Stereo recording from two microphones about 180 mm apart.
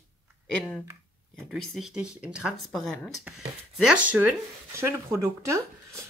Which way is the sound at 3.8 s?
5° right (ahead or behind).